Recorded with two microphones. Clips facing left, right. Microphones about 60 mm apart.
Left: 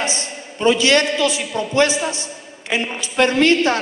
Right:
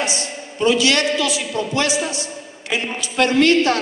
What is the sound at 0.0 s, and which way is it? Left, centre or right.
A woman's voice, left.